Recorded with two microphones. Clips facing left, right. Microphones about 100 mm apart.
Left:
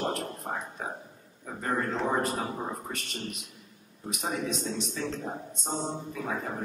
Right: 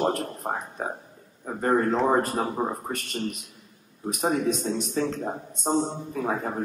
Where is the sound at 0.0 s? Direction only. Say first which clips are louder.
Right 6 dB; 45° right (ahead or behind).